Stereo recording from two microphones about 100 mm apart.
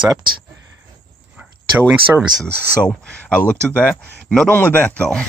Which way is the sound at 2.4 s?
10° left (ahead or behind).